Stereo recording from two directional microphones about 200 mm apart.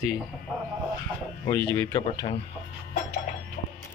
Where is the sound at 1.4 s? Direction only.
15° left (ahead or behind).